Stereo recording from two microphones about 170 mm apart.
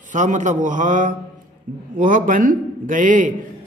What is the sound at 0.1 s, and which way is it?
Speech, 45° right (ahead or behind).